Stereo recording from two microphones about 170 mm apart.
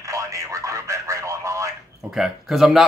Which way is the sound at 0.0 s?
20° right (ahead or behind).